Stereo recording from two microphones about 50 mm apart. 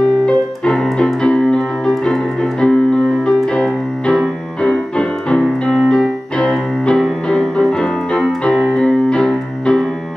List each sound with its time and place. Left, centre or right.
0.0 s music: centre
6.9 s keyboard: centre